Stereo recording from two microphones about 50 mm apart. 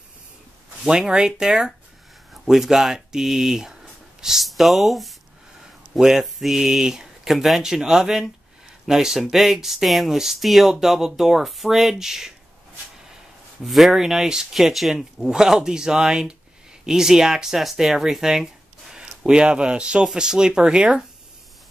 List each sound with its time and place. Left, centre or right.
0.8 s speech: centre
5.9 s speech: centre
13.7 s speech: centre